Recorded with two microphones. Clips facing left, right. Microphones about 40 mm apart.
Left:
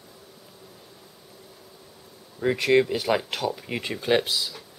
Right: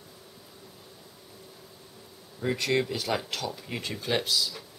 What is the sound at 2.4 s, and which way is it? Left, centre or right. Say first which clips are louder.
Speech: left 7 dB; centre.